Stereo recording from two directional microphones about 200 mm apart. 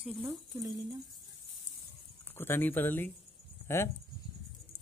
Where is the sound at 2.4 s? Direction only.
10° left (ahead or behind).